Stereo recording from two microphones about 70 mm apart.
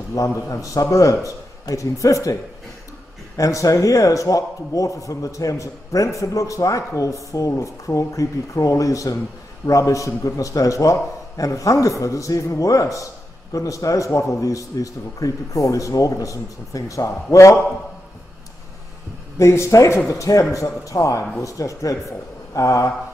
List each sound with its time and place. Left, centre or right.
0.1 s a man's voice: left
3.3 s a man's voice: left
19.3 s a man's voice: left